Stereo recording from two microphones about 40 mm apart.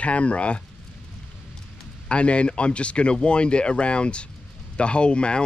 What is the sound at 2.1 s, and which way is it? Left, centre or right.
Speech, left.